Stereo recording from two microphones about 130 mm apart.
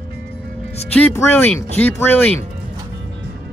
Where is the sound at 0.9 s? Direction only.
15° left (ahead or behind).